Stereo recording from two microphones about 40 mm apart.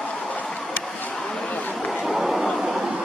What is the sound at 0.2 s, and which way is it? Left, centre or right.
Vehicle, left.